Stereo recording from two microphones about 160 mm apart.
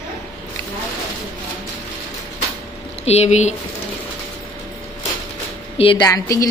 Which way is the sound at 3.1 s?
45° left (ahead or behind).